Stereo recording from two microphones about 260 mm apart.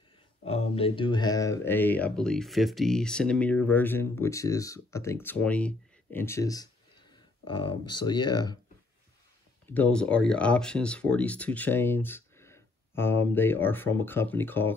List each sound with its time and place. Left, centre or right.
0.5 s speech: left
9.7 s speech: centre